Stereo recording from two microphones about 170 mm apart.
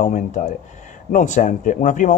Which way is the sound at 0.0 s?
45° left (ahead or behind).